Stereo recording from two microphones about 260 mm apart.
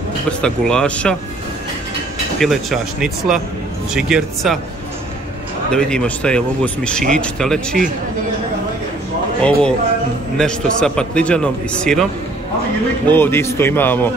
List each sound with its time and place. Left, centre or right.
0.3 s speech: centre
2.4 s speech: centre
5.7 s speech: centre
9.4 s speech: centre
13.1 s speech: centre